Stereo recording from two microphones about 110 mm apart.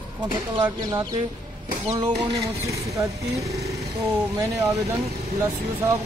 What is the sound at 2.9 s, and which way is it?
Speech, 30° right (ahead or behind).